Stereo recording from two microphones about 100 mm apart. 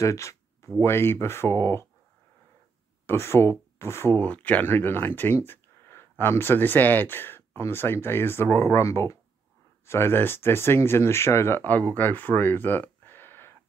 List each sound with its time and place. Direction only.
0.0 s a sound: 30° left (ahead or behind)
0.7 s speech: 25° left (ahead or behind)
3.1 s speech: 25° left (ahead or behind)